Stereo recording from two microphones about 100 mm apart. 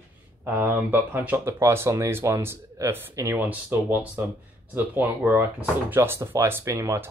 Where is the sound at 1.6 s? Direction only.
25° right (ahead or behind).